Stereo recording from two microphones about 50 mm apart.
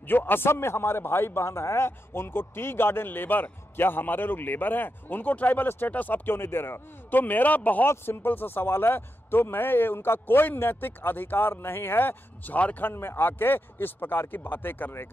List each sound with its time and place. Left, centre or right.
0.1 s a man's voice: left
7.8 s a man's voice: left
12.5 s a man's voice: left
12.8 s a man's voice: left